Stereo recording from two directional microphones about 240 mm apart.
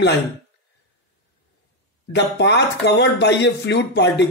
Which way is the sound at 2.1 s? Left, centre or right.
Left.